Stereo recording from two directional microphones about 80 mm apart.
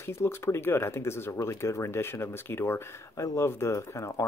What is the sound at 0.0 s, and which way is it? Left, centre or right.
Speech, left.